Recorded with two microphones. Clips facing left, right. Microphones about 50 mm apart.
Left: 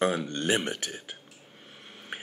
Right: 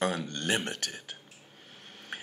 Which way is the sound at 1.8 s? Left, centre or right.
Left.